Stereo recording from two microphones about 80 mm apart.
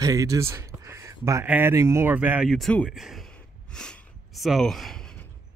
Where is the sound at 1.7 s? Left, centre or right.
Right.